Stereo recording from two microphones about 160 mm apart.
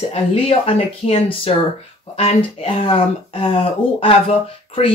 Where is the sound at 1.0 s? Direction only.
35° left (ahead or behind).